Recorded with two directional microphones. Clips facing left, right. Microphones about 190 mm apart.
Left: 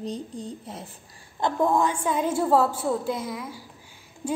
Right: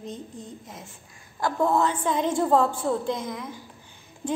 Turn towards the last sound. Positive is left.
turn(degrees=10)  # may be behind; listen again after turning